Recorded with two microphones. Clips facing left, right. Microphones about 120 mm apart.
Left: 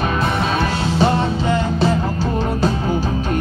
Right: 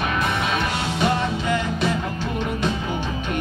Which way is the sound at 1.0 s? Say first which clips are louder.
Left 5 dB; 30° left (ahead or behind).